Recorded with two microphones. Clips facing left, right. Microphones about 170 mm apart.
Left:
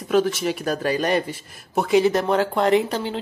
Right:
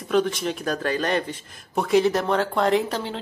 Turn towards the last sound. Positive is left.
turn(degrees=0)  # may be behind; listen again after turning